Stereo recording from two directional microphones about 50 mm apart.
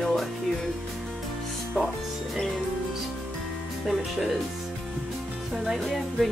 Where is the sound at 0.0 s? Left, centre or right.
Centre.